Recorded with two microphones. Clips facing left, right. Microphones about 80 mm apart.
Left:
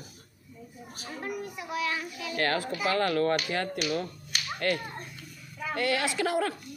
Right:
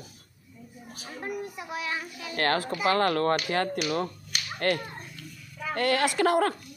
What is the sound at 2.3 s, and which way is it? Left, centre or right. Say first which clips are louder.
Speech: right 2 dB; right.